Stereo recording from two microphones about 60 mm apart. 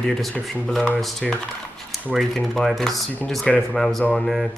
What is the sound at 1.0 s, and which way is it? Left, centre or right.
Speech, centre.